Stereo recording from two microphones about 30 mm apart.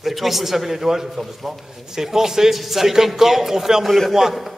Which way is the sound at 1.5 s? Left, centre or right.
Centre.